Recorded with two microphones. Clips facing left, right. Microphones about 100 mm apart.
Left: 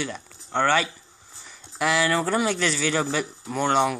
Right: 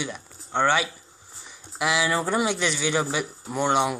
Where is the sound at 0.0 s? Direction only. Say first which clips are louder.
Left 1 dB; 15° right (ahead or behind).